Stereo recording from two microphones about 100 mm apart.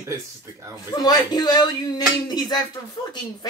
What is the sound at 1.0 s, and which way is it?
Speech, 40° left (ahead or behind).